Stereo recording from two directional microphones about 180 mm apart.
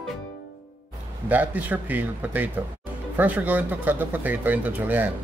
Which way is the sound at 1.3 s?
10° right (ahead or behind).